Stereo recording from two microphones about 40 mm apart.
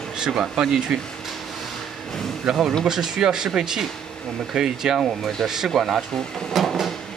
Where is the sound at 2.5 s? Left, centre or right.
Centre.